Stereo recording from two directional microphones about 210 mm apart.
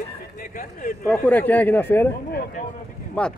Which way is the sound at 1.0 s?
5° left (ahead or behind).